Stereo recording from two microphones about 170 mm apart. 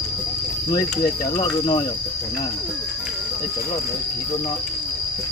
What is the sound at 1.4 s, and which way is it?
Speech, 25° left (ahead or behind).